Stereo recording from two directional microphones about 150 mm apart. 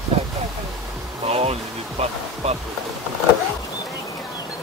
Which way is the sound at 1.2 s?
45° right (ahead or behind).